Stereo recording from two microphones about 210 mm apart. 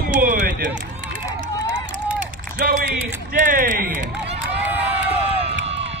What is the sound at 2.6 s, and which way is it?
A man's voice, 45° right (ahead or behind).